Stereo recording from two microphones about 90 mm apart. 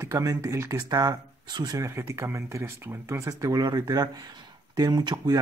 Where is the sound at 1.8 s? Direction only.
30° right (ahead or behind).